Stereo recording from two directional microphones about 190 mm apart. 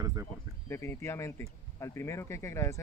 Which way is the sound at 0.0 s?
15° right (ahead or behind).